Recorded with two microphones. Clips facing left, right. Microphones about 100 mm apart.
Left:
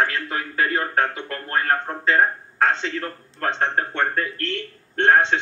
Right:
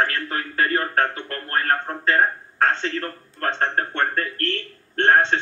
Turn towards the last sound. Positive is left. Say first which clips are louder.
# even
turn(degrees=15)  # may be behind; listen again after turning